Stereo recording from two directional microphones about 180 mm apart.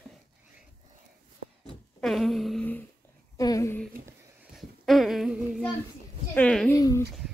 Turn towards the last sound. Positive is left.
turn(degrees=20)  # may be behind; listen again after turning